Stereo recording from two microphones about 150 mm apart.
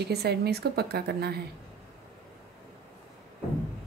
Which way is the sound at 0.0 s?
90° right.